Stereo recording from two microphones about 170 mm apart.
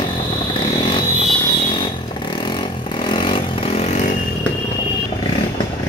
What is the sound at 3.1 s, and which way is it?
Vehicle, 30° left (ahead or behind).